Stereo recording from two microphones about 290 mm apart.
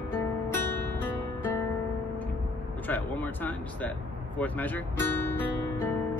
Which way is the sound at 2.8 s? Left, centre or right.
Centre.